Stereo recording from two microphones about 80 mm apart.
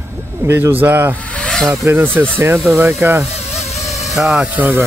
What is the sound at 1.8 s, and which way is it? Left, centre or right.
Speech, right.